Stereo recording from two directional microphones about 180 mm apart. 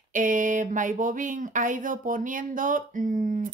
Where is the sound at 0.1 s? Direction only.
45° right (ahead or behind).